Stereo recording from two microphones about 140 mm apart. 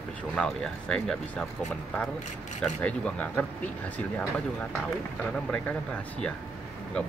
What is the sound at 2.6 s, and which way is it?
Speech, 5° left (ahead or behind).